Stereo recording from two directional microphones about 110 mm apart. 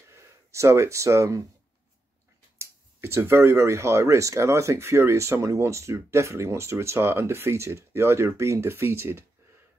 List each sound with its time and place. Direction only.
0.0 s speech: 25° right (ahead or behind)
2.6 s speech: 25° right (ahead or behind)